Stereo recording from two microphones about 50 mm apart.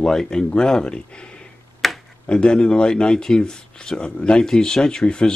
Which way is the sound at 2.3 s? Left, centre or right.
Centre.